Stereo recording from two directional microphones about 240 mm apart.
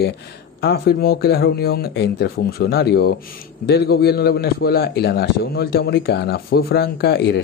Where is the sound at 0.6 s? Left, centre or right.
Left.